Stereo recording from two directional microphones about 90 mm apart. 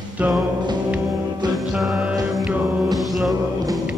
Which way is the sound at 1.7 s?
10° right (ahead or behind).